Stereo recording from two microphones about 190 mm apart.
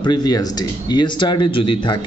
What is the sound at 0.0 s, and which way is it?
Speech, 20° left (ahead or behind).